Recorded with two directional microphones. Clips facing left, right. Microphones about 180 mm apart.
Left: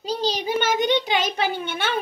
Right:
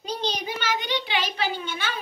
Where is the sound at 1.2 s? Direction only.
50° left (ahead or behind).